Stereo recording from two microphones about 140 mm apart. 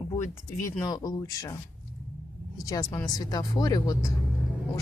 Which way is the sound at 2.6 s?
25° left (ahead or behind).